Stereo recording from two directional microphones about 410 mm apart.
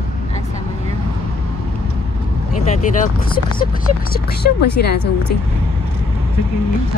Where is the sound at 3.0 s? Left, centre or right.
Left.